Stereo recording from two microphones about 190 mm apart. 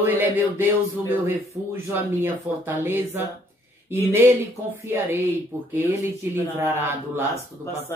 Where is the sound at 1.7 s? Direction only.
10° right (ahead or behind).